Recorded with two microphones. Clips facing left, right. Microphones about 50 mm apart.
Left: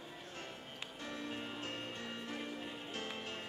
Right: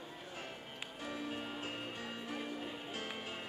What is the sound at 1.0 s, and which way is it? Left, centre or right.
Music, centre.